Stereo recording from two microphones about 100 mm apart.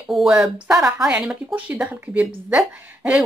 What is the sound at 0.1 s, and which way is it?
Speech, centre (ahead or behind).